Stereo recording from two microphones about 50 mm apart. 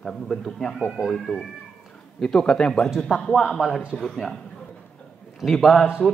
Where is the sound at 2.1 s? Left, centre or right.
Centre.